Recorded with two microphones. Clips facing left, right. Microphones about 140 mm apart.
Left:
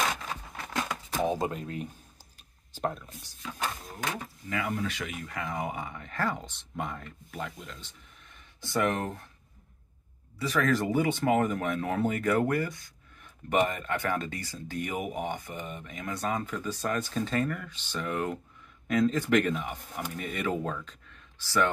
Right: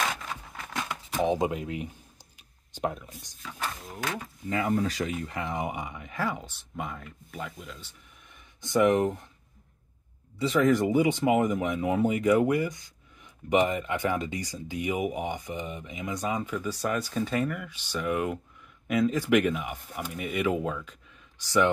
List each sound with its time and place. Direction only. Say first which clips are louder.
1.2 s speech: right 4 dB; 20° right (ahead or behind)
4.5 s speech: right 5 dB; 30° right (ahead or behind); by 7.9 s 5° right (ahead or behind)
8.5 s speech: right 6 dB; 20° right (ahead or behind)
10.4 s speech: right 4 dB; 20° right (ahead or behind)